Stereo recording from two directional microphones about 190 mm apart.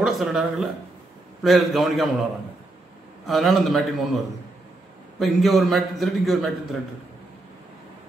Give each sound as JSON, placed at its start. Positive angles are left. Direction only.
{"t": 0.0, "sound": "a man's voice", "side_deg": 0}
{"t": 3.3, "sound": "a man's voice", "side_deg": 0}
{"t": 5.2, "sound": "a man's voice", "side_deg": 0}